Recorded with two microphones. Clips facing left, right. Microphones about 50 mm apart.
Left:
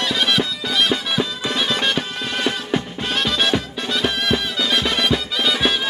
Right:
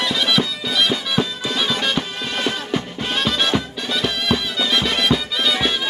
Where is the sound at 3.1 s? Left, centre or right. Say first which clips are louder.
Even; centre.